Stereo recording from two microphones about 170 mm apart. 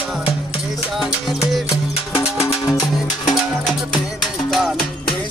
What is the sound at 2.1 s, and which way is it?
Music, 25° left (ahead or behind).